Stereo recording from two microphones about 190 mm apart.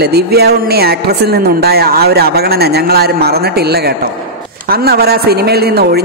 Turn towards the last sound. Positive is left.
turn(degrees=-55)  # may be behind; listen again after turning